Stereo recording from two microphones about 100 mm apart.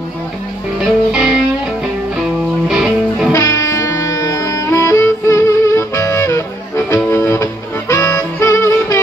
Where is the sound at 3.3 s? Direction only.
30° left (ahead or behind).